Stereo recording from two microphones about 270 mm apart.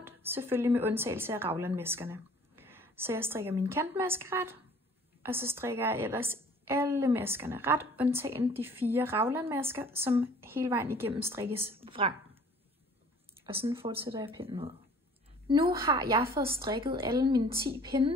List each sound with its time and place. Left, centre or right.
0.0 s a woman's voice: centre
11.8 s speech: centre
13.5 s speech: centre
15.8 s a woman's voice: centre